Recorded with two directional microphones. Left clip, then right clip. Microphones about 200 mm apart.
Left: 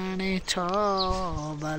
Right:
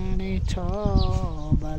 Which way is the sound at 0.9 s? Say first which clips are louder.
Left 4 dB; 20° left (ahead or behind).